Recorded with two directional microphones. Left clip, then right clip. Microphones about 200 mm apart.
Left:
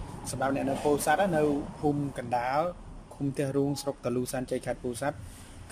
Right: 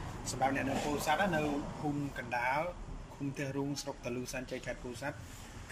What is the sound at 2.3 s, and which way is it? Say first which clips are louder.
Speech: left 6 dB; 20° left (ahead or behind).